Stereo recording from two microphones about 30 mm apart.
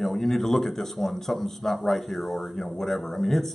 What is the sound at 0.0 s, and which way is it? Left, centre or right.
A man's voice, centre.